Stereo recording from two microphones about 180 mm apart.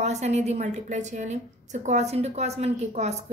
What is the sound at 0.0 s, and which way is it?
A woman's voice, 40° right (ahead or behind).